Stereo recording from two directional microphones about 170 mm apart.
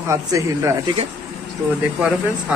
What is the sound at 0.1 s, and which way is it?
Speech, 20° right (ahead or behind).